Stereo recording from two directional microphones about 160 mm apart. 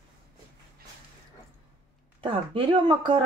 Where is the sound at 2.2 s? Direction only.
35° right (ahead or behind).